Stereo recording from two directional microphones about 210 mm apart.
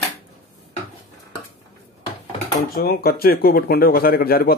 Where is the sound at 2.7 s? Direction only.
45° left (ahead or behind).